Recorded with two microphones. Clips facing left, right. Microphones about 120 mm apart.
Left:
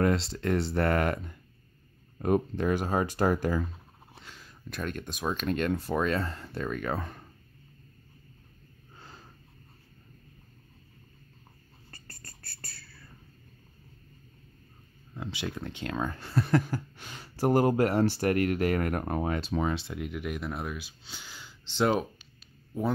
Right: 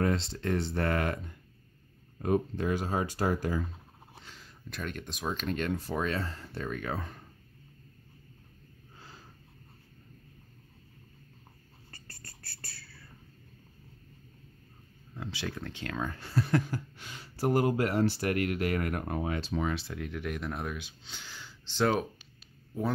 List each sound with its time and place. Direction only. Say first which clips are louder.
0.0 s speech: left 3 dB; 65° left (ahead or behind)
2.2 s speech: left 3 dB; 55° left (ahead or behind)
11.9 s a sound: left 1 dB; 45° left (ahead or behind)
15.1 s speech: left 2 dB; 20° left (ahead or behind)
16.0 s speech: left 2 dB; 40° left (ahead or behind)
19.7 s speech: left 2 dB; 15° left (ahead or behind)